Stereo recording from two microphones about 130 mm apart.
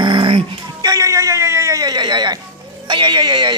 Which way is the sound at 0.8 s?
30° right (ahead or behind).